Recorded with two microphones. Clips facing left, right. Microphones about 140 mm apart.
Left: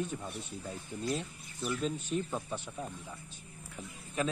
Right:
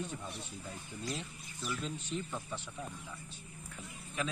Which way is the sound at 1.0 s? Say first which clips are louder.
Left 6 dB; 55° left (ahead or behind).